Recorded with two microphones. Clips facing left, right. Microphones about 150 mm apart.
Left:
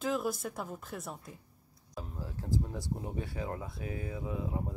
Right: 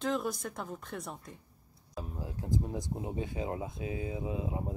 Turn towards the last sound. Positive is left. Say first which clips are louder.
# right 1 dB
turn(degrees=-20)  # may be behind; listen again after turning